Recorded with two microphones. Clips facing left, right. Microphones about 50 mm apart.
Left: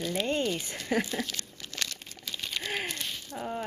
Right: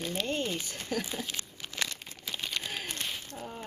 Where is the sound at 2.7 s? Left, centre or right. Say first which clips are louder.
Left 3 dB; left.